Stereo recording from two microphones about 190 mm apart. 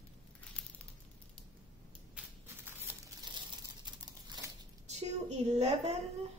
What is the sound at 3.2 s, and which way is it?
Crumpling, 20° right (ahead or behind).